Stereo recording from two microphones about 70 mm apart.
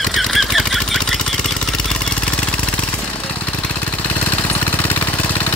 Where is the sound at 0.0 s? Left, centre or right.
Centre.